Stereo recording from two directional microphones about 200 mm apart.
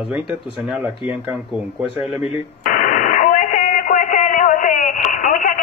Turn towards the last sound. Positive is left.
turn(degrees=40)  # may be behind; listen again after turning